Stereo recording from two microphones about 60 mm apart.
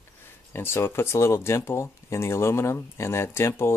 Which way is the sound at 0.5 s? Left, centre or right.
Left.